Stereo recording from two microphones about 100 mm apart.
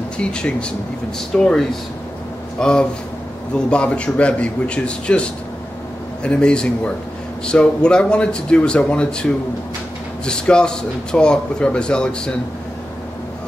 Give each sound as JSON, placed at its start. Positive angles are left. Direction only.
{"t": 0.2, "sound": "speech", "side_deg": 10}